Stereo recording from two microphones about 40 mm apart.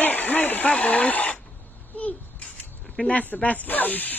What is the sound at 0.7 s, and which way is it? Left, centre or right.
Speech, left.